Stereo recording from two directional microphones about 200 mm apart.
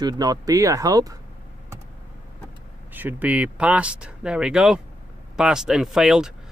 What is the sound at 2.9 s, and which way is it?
Speech, 10° right (ahead or behind).